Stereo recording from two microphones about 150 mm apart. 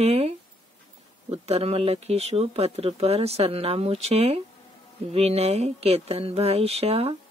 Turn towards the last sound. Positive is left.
turn(degrees=-40)  # may be behind; listen again after turning